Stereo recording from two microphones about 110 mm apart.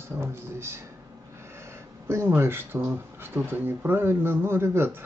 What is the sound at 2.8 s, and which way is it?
Speech, 20° right (ahead or behind).